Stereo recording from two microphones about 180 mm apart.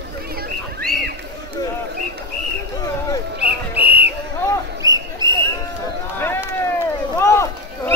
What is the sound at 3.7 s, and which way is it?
Whistle, 10° right (ahead or behind).